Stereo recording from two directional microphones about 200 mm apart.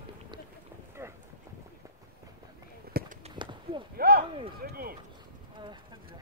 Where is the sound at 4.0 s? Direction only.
50° right (ahead or behind).